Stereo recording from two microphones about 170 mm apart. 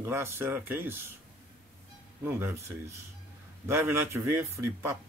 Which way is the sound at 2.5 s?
15° right (ahead or behind).